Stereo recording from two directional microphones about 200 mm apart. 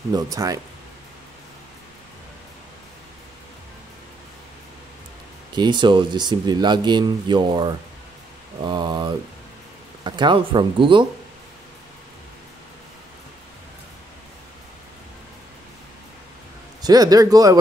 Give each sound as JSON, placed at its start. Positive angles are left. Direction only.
{"t": 0.1, "sound": "speech", "side_deg": -20}
{"t": 5.5, "sound": "speech", "side_deg": -20}
{"t": 16.8, "sound": "speech", "side_deg": -20}